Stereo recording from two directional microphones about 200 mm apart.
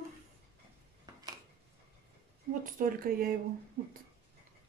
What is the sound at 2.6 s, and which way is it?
Speech, 45° right (ahead or behind).